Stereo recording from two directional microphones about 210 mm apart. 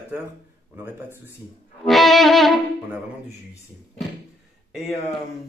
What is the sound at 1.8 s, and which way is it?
Speech, centre (ahead or behind).